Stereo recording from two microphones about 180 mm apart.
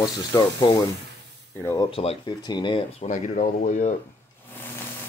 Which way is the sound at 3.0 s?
45° left (ahead or behind).